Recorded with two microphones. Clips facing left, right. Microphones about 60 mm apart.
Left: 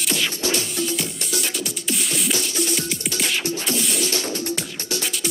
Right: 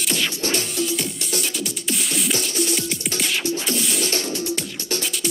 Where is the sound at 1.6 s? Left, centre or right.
Centre.